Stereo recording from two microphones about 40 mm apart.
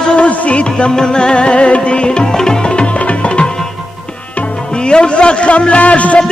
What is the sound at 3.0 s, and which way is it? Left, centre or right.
Tabla, left.